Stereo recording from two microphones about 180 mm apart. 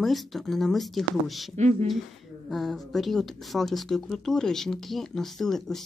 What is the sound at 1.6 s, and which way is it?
Speech, 40° right (ahead or behind).